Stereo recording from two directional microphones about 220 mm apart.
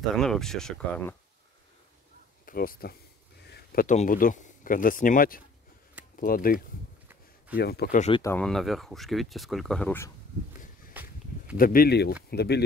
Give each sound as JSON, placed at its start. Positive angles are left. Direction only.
{"t": 0.1, "sound": "speech", "side_deg": 0}
{"t": 2.4, "sound": "speech", "side_deg": 40}
{"t": 8.2, "sound": "speech", "side_deg": 10}
{"t": 10.9, "sound": "walk", "side_deg": -5}
{"t": 11.5, "sound": "speech", "side_deg": 40}